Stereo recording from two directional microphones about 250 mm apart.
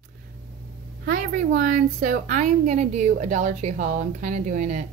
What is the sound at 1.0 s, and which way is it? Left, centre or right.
A woman's voice, right.